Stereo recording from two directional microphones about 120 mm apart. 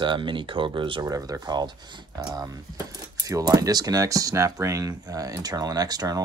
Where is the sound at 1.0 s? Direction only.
30° right (ahead or behind).